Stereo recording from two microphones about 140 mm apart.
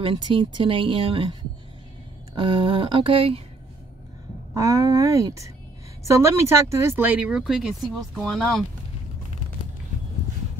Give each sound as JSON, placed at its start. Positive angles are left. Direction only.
{"t": 0.0, "sound": "speech", "side_deg": -35}
{"t": 2.3, "sound": "speech", "side_deg": -35}
{"t": 4.6, "sound": "speech", "side_deg": -20}